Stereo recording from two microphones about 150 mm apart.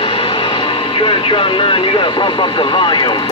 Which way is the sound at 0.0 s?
35° left (ahead or behind).